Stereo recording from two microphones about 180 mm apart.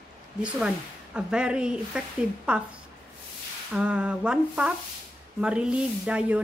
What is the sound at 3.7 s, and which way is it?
Speech, 5° right (ahead or behind).